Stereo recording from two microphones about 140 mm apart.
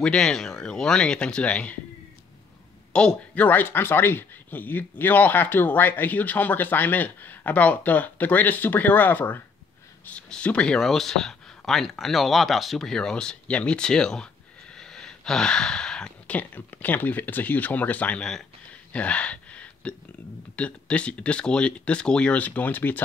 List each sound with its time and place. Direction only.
0.0 s speech: 5° left (ahead or behind)
2.9 s speech: 5° left (ahead or behind)